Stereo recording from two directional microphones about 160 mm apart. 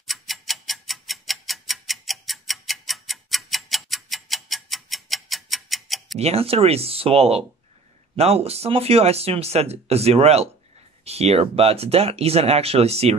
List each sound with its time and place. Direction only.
0.0 s tick-tock: centre (ahead or behind)
6.1 s speech: 40° right (ahead or behind)